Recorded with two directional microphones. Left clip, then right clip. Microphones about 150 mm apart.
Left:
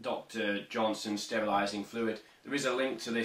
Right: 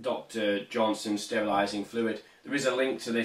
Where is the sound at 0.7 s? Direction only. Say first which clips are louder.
Right 4 dB; 15° left (ahead or behind).